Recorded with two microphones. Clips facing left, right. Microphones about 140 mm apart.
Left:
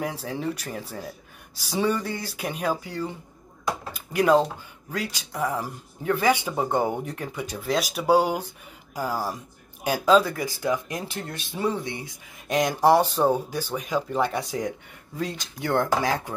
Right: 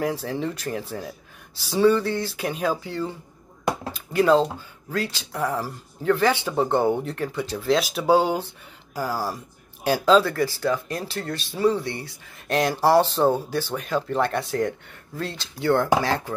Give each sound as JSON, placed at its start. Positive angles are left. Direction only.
{"t": 0.0, "sound": "speech", "side_deg": 10}
{"t": 10.0, "sound": "speech", "side_deg": 10}